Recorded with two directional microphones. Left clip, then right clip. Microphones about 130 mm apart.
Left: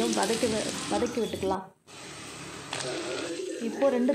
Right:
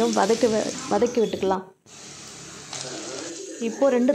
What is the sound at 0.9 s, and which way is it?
Speech, 45° right (ahead or behind).